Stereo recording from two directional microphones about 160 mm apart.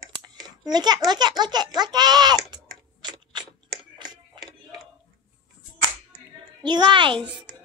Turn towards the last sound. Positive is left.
turn(degrees=-30)  # may be behind; listen again after turning